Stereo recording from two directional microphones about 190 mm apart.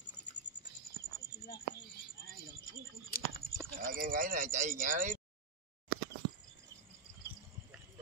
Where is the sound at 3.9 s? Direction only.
45° right (ahead or behind).